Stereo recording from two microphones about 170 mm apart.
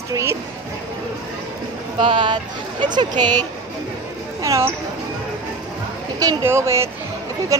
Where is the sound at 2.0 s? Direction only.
30° right (ahead or behind).